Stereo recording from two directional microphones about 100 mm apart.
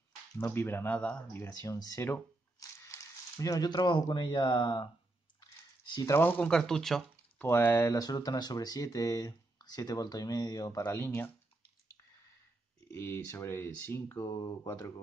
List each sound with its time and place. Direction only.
0.4 s speech: 25° left (ahead or behind)
1.6 s speech: 35° left (ahead or behind)
5.4 s typing: 40° left (ahead or behind)
6.1 s speech: 20° left (ahead or behind)
6.5 s speech: 5° left (ahead or behind)
7.4 s speech: 25° left (ahead or behind)
8.0 s speech: 40° left (ahead or behind)
10.9 s speech: 25° left (ahead or behind)
12.9 s speech: 25° left (ahead or behind)